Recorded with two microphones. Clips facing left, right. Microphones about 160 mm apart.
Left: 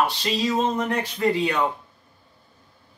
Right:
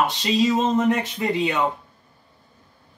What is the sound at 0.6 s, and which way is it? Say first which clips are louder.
Speech: right 4 dB; 20° right (ahead or behind).